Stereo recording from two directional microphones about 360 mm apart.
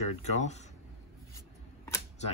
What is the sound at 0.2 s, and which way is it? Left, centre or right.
Speech, centre.